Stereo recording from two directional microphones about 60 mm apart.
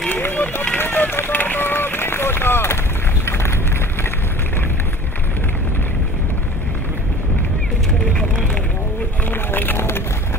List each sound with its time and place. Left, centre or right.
0.1 s run: left
8.1 s vehicle: centre
9.3 s run: left